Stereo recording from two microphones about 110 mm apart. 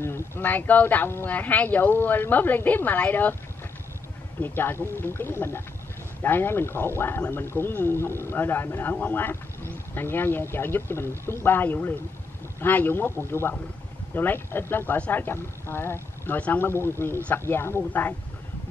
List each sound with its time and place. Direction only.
0.0 s speech: 20° left (ahead or behind)
4.4 s speech: 20° left (ahead or behind)